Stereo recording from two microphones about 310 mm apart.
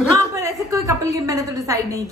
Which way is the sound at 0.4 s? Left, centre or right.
Centre.